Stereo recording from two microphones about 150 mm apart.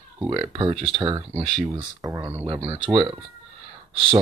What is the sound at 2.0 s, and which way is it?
Speech, 25° right (ahead or behind).